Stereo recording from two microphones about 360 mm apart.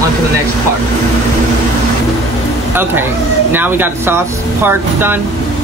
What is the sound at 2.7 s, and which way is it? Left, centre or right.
Speech, centre.